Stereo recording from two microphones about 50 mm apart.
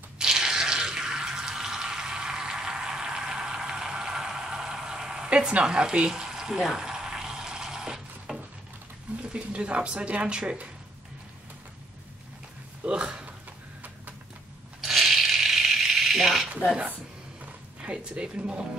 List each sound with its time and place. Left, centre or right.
0.2 s a sound: centre
9.2 s speech: right
12.8 s speech: right
14.8 s coin: centre
17.8 s speech: centre